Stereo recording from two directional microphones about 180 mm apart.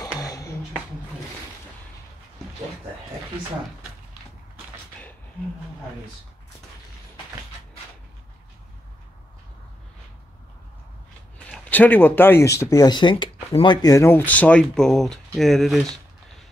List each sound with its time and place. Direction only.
0.0 s music: 20° left (ahead or behind)
11.3 s speech: 10° left (ahead or behind)